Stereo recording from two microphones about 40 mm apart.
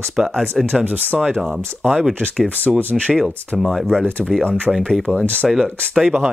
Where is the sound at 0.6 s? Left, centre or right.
Centre.